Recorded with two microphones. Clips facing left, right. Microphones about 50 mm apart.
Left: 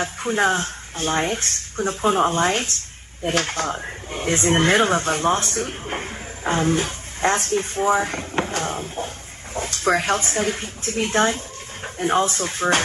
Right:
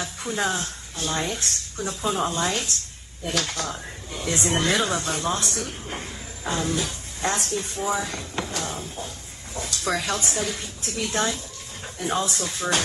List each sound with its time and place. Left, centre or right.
0.0 s speech: left